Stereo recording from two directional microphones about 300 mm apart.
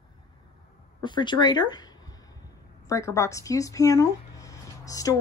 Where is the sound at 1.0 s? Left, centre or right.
Centre.